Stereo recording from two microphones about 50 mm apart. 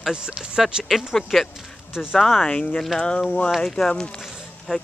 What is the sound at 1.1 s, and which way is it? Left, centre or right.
Speech, centre.